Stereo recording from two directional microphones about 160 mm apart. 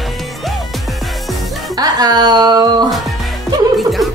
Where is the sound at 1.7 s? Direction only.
25° right (ahead or behind).